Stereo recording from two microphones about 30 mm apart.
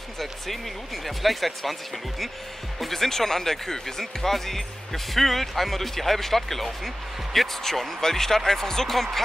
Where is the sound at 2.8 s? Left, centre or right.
Centre.